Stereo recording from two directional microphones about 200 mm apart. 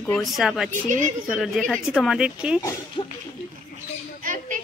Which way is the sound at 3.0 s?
25° left (ahead or behind).